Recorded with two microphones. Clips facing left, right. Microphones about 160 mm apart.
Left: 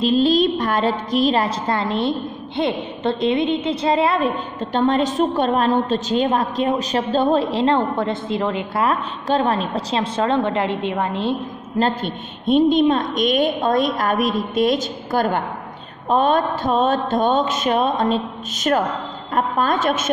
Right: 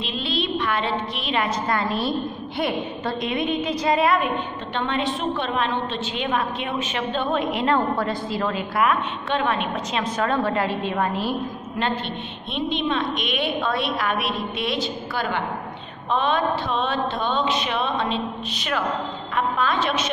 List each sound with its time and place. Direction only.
0.0 s a woman's voice: 40° left (ahead or behind)
4.7 s a woman's voice: 40° left (ahead or behind); by 8.8 s 20° left (ahead or behind)
8.8 s a woman's voice: 35° left (ahead or behind)
11.8 s a woman's voice: 40° left (ahead or behind)